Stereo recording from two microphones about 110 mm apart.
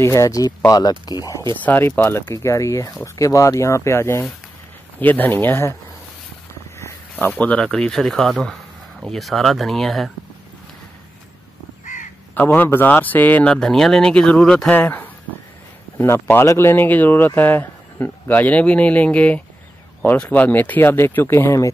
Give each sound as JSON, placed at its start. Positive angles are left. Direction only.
{"t": 0.0, "sound": "speech", "side_deg": 30}
{"t": 1.6, "sound": "speech", "side_deg": 20}
{"t": 6.8, "sound": "speech", "side_deg": 20}
{"t": 12.4, "sound": "speech", "side_deg": 20}